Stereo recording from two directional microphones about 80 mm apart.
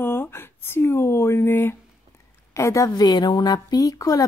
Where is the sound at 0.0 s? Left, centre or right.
Left.